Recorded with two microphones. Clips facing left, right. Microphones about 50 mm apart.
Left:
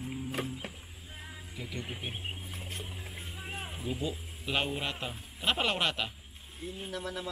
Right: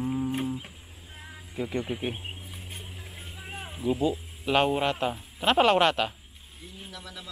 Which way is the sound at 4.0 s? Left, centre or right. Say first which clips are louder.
Right 9 dB; centre.